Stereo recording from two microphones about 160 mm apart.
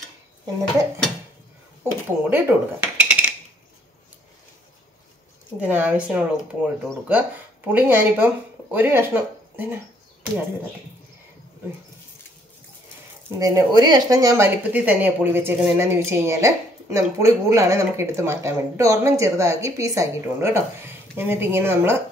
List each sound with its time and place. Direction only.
1.8 s a sound: 15° right (ahead or behind)
2.2 s cutlery: 10° right (ahead or behind)
5.6 s speech: 10° right (ahead or behind)
13.4 s speech: 25° right (ahead or behind)